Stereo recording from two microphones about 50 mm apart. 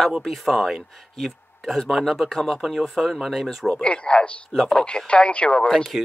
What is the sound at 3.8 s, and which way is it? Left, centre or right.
Speech, left.